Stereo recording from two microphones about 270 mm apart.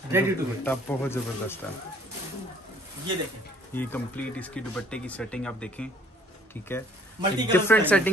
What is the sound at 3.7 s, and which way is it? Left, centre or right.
A woman's voice, centre.